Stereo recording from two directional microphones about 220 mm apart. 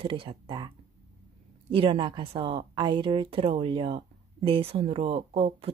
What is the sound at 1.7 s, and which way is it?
A woman's voice, 20° right (ahead or behind).